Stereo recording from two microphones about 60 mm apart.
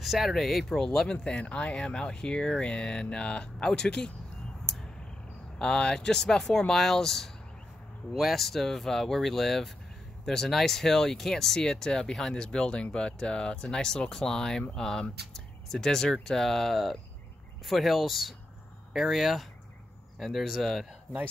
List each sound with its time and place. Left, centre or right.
0.0 s speech: centre
4.7 s a sound: centre
5.6 s speech: centre